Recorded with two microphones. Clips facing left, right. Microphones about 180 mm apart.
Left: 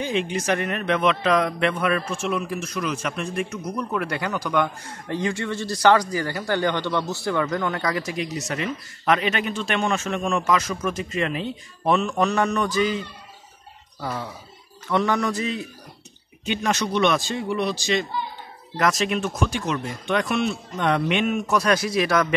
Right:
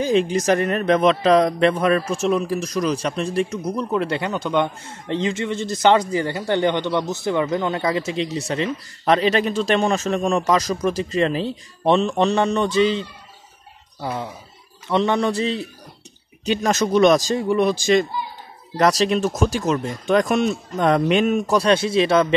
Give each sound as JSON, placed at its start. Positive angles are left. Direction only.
{"t": 0.0, "sound": "a man's voice", "side_deg": -35}
{"t": 14.0, "sound": "speech", "side_deg": -20}
{"t": 14.9, "sound": "a sound", "side_deg": -25}
{"t": 16.4, "sound": "a man's voice", "side_deg": -40}
{"t": 18.8, "sound": "a man's voice", "side_deg": -35}